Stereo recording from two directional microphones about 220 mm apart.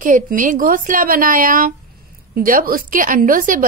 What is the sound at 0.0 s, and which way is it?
A woman's voice, 35° right (ahead or behind).